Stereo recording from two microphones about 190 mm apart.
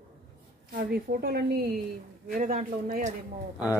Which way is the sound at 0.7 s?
50° right (ahead or behind).